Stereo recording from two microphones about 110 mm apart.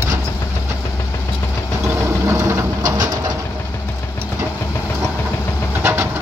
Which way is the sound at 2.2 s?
25° right (ahead or behind).